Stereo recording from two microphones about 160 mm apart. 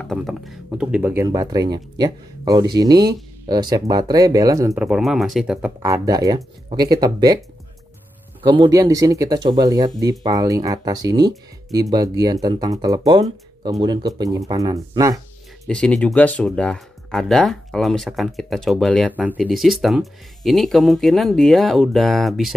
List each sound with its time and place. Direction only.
0.0 s speech: centre (ahead or behind); by 4.7 s 20° right (ahead or behind)
4.7 s speech: 5° right (ahead or behind)
5.8 s speech: 20° right (ahead or behind)
8.4 s speech: 30° right (ahead or behind)
15.6 s speech: 5° left (ahead or behind)